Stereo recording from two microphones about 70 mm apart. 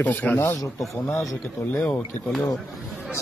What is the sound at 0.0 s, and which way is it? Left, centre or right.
Speech, left.